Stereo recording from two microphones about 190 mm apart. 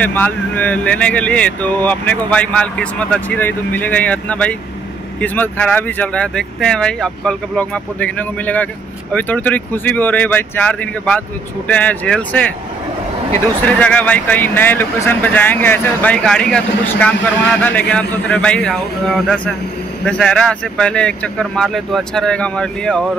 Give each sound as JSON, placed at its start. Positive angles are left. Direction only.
{"t": 0.0, "sound": "speech", "side_deg": 10}